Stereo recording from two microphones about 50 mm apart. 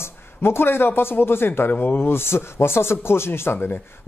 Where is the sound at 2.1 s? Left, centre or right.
Left.